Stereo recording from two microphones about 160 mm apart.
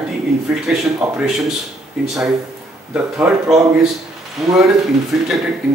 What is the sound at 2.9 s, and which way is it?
Speech, 5° right (ahead or behind).